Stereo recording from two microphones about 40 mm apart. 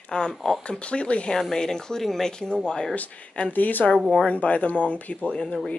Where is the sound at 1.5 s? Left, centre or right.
Centre.